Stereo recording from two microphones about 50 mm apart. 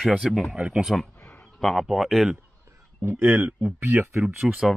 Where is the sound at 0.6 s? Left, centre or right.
Centre.